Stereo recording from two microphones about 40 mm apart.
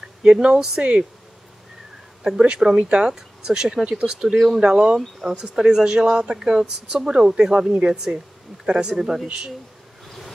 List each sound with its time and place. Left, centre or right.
0.2 s speech: right
2.4 s speech: right